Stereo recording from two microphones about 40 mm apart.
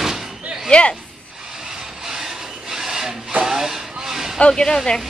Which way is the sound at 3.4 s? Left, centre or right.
Centre.